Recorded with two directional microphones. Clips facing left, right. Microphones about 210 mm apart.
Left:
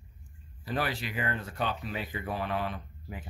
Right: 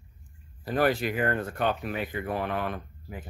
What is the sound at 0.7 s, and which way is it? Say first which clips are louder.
Speech: right 8 dB; 50° right (ahead or behind).